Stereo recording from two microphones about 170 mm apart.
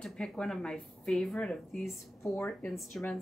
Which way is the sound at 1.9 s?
15° left (ahead or behind).